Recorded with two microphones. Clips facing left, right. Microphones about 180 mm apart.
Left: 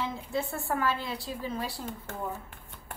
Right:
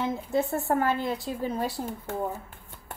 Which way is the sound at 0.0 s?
50° right (ahead or behind).